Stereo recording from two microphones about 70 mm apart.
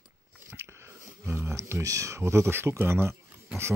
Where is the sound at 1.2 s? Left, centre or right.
Right.